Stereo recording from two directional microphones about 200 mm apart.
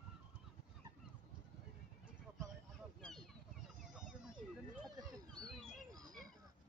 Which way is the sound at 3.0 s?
Centre (ahead or behind).